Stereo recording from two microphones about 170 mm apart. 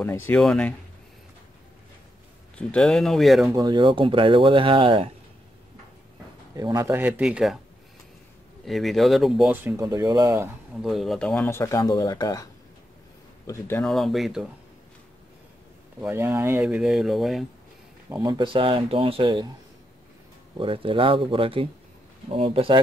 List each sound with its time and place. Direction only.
0.0 s speech: 10° left (ahead or behind)
2.7 s speech: 5° left (ahead or behind)
3.5 s speech: 25° right (ahead or behind)
6.5 s speech: 20° right (ahead or behind)
8.6 s speech: centre (ahead or behind)
9.5 s speech: 15° right (ahead or behind)
10.8 s speech: centre (ahead or behind); by 12.4 s 20° left (ahead or behind)
13.5 s speech: 15° left (ahead or behind)
13.8 s speech: centre (ahead or behind)
16.0 s speech: 15° right (ahead or behind)
18.2 s speech: 30° right (ahead or behind)
20.5 s speech: 30° right (ahead or behind)